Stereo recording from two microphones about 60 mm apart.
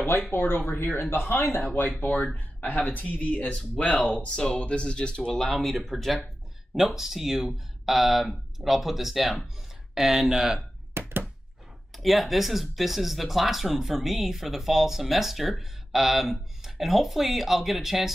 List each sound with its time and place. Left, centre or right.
0.3 s speech: left; by 10.6 s centre
10.9 s thunk: right
11.9 s speech: centre